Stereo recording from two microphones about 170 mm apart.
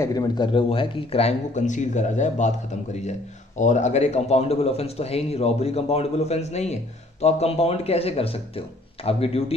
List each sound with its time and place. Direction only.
0.0 s speech: 20° left (ahead or behind)